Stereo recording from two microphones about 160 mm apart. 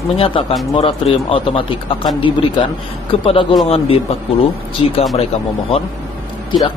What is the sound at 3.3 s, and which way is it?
Speech, 35° left (ahead or behind).